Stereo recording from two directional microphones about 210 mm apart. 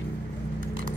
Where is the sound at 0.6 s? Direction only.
40° right (ahead or behind).